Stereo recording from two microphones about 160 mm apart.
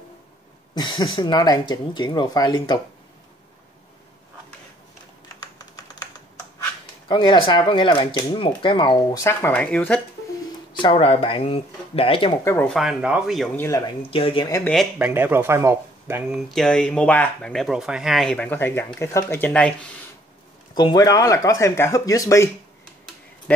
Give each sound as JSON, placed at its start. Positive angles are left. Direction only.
{"t": 0.7, "sound": "speech", "side_deg": 30}
{"t": 7.1, "sound": "speech", "side_deg": 30}
{"t": 10.7, "sound": "speech", "side_deg": 30}
{"t": 12.6, "sound": "speech", "side_deg": 0}
{"t": 13.6, "sound": "speech", "side_deg": 20}
{"t": 14.1, "sound": "speech", "side_deg": 35}
{"t": 14.6, "sound": "speech", "side_deg": 0}
{"t": 15.0, "sound": "speech", "side_deg": -10}
{"t": 20.7, "sound": "speech", "side_deg": 25}